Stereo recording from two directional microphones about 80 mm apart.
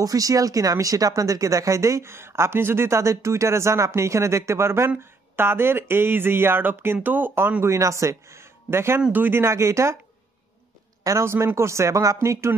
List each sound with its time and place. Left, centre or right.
0.0 s speech: right
11.1 s speech: right